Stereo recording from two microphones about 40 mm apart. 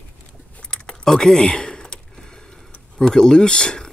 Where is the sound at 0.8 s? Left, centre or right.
Centre.